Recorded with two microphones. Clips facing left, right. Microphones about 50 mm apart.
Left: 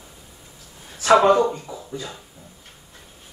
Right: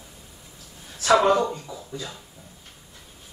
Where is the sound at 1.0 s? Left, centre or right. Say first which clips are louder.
Left 4 dB; left.